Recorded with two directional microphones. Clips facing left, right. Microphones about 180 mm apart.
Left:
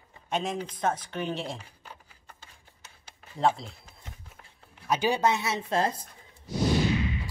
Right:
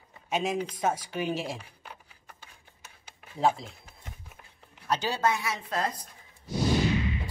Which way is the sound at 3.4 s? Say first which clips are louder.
Even; centre (ahead or behind).